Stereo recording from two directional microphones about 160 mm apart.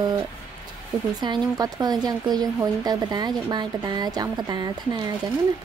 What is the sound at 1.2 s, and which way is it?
Speech, 25° right (ahead or behind).